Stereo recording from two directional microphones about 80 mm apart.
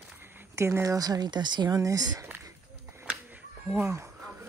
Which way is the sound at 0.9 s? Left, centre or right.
Right.